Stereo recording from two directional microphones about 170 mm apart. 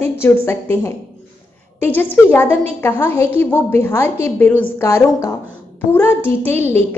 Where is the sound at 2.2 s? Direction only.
15° left (ahead or behind).